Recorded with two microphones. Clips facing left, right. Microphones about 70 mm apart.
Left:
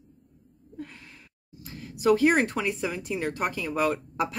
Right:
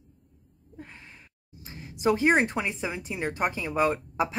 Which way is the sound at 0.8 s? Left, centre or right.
Right.